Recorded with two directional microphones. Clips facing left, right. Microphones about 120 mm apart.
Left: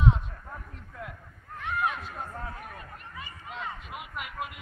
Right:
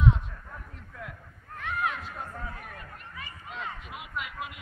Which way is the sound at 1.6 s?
20° left (ahead or behind).